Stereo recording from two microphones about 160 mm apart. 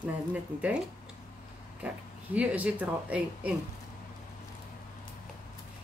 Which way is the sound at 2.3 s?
10° right (ahead or behind).